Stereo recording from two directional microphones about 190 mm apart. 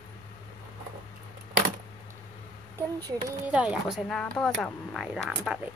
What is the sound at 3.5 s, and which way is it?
Speech, 5° right (ahead or behind).